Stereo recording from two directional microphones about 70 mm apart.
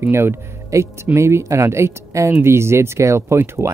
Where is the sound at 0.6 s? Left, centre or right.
Right.